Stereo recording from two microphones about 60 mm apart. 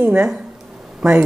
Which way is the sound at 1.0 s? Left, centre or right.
Centre.